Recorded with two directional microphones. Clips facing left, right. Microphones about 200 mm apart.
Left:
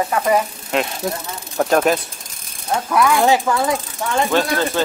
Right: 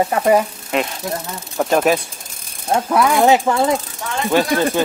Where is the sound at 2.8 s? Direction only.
25° right (ahead or behind).